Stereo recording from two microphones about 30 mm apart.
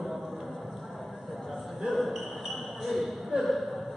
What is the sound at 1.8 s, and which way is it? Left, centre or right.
Basketball bounce, centre.